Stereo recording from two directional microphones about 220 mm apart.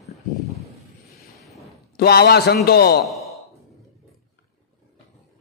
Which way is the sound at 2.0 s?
45° left (ahead or behind).